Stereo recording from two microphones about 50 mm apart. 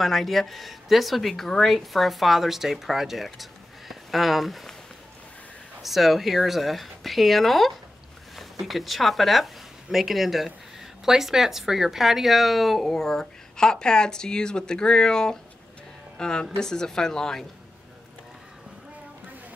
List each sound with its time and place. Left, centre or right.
0.0 s speech: centre
5.8 s speech: centre